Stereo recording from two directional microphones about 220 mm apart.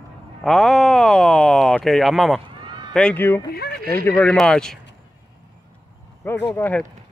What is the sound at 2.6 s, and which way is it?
Run, 20° right (ahead or behind).